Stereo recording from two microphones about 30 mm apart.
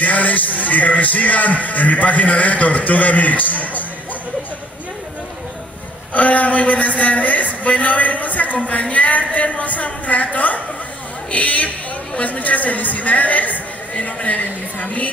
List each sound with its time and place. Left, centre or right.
0.0 s a man's voice: left
6.1 s a man's voice: left